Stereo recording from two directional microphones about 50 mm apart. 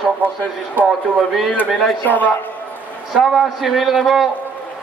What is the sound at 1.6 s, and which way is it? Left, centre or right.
Speech, left.